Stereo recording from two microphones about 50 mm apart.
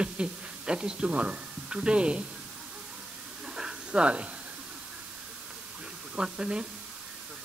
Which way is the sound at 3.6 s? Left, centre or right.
Centre.